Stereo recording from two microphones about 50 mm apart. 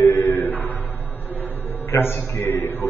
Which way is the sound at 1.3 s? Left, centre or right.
Left.